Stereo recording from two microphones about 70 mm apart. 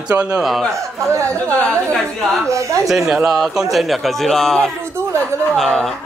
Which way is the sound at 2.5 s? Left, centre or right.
Right.